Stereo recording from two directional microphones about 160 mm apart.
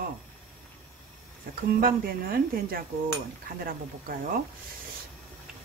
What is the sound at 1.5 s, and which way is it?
Speech, 65° right (ahead or behind).